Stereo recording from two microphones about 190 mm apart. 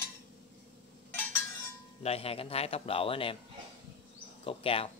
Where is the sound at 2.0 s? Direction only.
30° left (ahead or behind).